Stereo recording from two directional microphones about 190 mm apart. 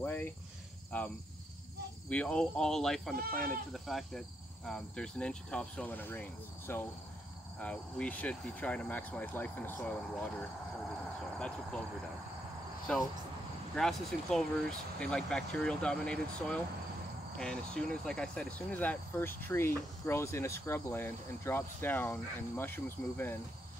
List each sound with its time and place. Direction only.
0.0 s speech: 10° left (ahead or behind)
3.2 s speech: 50° right (ahead or behind)
3.7 s speech: centre (ahead or behind)
11.3 s speech: 5° left (ahead or behind)
12.9 s speech: 5° left (ahead or behind)